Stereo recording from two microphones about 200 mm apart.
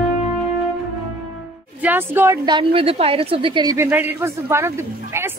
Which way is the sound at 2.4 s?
25° right (ahead or behind).